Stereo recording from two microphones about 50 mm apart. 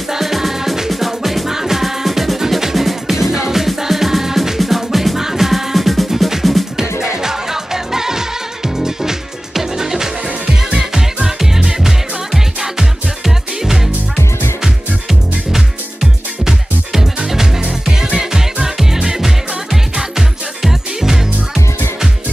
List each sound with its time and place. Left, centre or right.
0.1 s music: centre
15.0 s music: centre